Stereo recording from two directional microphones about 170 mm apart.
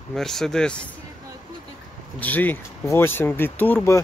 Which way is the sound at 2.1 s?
10° left (ahead or behind).